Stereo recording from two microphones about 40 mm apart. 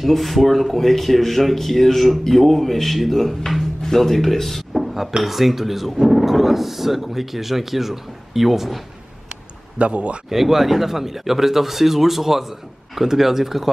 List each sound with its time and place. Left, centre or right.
0.0 s speech: centre
9.8 s speech: right
10.3 s speech: centre